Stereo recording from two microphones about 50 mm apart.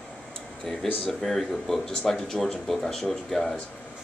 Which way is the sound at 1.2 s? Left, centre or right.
Centre.